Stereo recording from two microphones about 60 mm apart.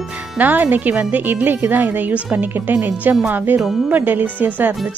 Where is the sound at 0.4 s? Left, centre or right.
Right.